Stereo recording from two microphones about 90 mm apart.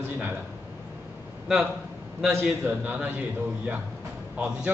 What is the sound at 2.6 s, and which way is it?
Speech, 20° right (ahead or behind).